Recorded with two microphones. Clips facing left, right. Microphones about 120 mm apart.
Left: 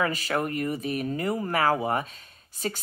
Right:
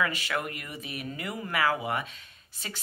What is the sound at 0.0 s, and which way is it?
A woman's voice, 40° left (ahead or behind).